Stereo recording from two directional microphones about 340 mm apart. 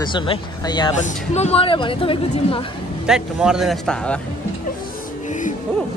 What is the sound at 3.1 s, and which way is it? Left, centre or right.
Speech, centre.